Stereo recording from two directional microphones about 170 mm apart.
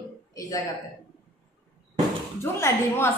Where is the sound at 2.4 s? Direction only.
15° left (ahead or behind).